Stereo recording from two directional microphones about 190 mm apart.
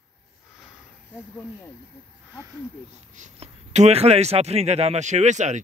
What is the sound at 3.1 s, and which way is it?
Speech, 40° right (ahead or behind).